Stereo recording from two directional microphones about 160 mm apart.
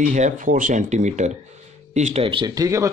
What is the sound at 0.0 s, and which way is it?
Speech, 55° right (ahead or behind).